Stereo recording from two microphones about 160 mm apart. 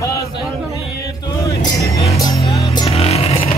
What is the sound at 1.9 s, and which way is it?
Music, 20° left (ahead or behind).